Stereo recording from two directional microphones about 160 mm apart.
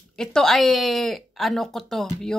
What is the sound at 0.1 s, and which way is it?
Speech, 5° left (ahead or behind).